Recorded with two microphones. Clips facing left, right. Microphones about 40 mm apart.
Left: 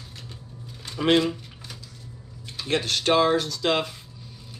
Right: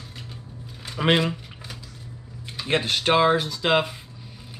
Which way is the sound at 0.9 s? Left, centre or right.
Centre.